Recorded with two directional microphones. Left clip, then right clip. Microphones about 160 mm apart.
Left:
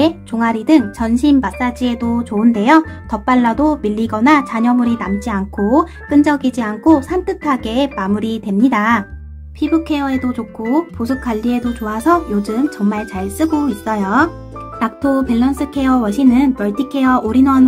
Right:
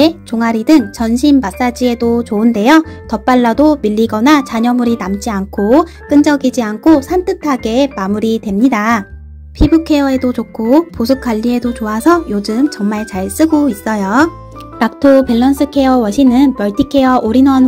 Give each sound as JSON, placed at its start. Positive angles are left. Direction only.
{"t": 0.0, "sound": "speech", "side_deg": -20}